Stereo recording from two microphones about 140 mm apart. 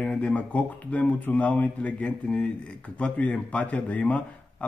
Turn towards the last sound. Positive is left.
turn(degrees=10)  # may be behind; listen again after turning